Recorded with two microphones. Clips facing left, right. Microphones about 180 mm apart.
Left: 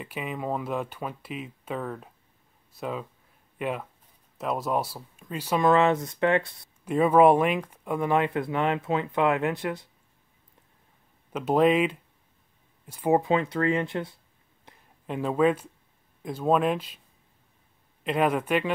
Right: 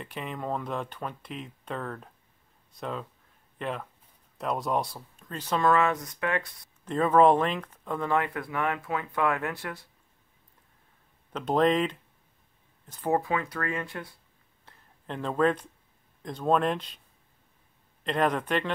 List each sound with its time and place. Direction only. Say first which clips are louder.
0.0 s speech: left 3 dB; 5° left (ahead or behind)
5.7 s speech: left 4 dB; 25° left (ahead or behind)
6.8 s speech: left 2 dB; 10° left (ahead or behind)
11.3 s speech: left 3 dB; 10° left (ahead or behind); by 14.1 s 25° left (ahead or behind)
14.6 s a sound: left 3 dB; 10° left (ahead or behind)
16.2 s speech: left 2 dB; 5° left (ahead or behind)
18.0 s speech: left 2 dB; 5° left (ahead or behind)